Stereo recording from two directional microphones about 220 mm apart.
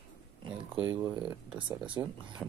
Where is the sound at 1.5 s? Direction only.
20° right (ahead or behind).